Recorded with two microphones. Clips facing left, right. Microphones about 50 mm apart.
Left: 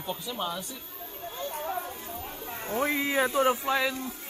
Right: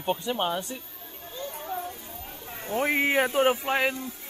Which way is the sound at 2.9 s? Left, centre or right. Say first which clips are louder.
Right 4 dB; right.